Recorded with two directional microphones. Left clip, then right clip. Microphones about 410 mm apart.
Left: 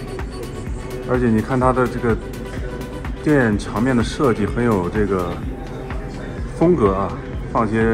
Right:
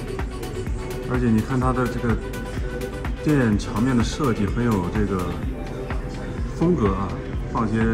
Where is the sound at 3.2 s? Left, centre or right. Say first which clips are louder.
Left 5 dB; centre.